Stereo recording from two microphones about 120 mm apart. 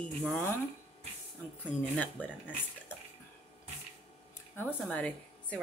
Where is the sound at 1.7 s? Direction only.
75° left (ahead or behind).